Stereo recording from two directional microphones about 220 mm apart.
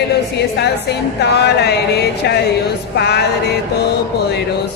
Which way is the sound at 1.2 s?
50° left (ahead or behind).